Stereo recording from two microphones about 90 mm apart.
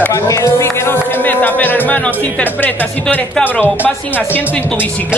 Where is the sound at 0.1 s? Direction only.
35° left (ahead or behind); by 2.1 s 20° left (ahead or behind).